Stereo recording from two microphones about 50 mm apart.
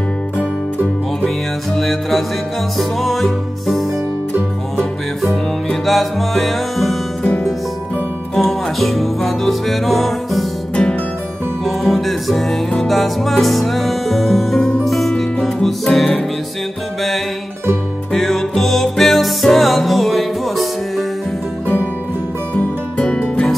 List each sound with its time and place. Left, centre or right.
1.8 s music: centre
5.3 s music: centre
8.4 s music: centre
11.6 s music: centre
18.1 s music: centre
22.5 s music: left